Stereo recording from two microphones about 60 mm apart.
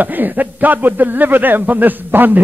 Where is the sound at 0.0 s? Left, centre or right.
Right.